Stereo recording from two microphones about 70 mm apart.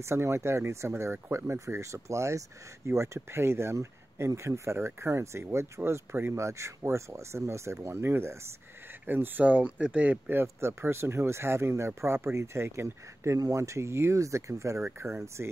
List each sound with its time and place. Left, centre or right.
0.0 s speech: right
9.0 s speech: right